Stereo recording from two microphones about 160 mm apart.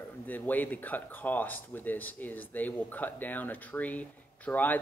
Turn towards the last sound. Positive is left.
turn(degrees=10)  # may be behind; listen again after turning